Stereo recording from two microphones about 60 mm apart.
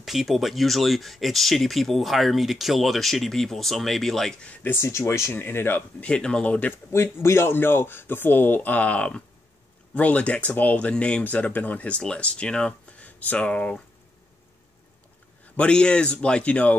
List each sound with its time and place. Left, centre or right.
0.0 s speech: centre
4.7 s speech: left
5.3 s speech: left
5.8 s speech: left
6.9 s speech: left; by 11.2 s centre
11.2 s speech: left
15.5 s speech: centre